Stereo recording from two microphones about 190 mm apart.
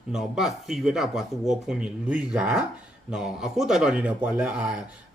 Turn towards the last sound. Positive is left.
turn(degrees=-5)  # may be behind; listen again after turning